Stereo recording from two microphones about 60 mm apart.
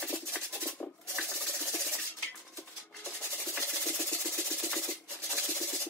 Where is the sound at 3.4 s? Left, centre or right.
Left.